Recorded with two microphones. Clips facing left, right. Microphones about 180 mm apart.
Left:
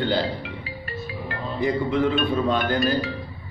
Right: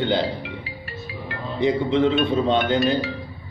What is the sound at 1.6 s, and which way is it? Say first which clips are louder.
Speech: right 3 dB; 25° right (ahead or behind).